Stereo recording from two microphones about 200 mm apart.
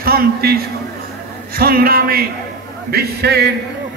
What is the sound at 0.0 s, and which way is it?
Speech, 50° right (ahead or behind).